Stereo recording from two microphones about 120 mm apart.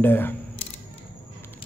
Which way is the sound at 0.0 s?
15° left (ahead or behind).